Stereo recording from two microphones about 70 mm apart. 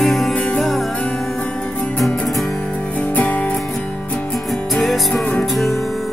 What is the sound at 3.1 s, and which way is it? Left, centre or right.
Music, left.